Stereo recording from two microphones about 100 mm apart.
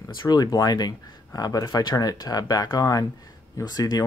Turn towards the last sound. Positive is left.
turn(degrees=40)  # may be behind; listen again after turning